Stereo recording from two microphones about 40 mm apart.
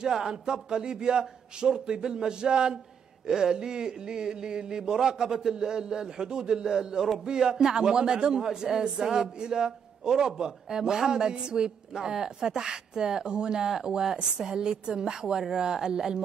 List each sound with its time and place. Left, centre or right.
0.0 s a man's voice: centre